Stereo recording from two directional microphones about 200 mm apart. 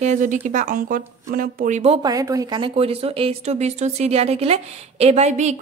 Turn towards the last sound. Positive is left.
turn(degrees=-35)  # may be behind; listen again after turning